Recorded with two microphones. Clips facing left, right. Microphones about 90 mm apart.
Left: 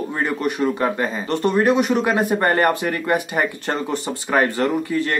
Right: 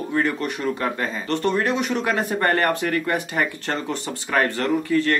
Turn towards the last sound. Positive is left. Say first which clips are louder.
# right 1 dB
turn(degrees=15)  # may be behind; listen again after turning